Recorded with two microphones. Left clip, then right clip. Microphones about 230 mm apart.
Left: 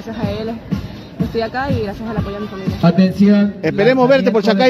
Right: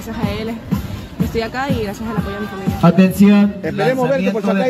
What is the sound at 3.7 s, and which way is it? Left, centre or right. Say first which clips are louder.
Speech: left 5 dB; left.